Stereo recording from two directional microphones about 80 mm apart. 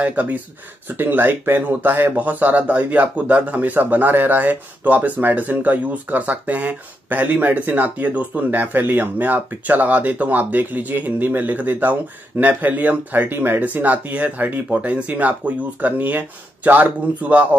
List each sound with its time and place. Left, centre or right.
0.0 s speech: right